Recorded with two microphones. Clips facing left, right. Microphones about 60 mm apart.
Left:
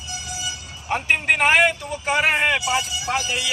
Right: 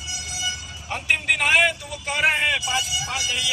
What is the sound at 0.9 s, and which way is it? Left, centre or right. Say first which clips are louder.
Speech: left 3 dB; left.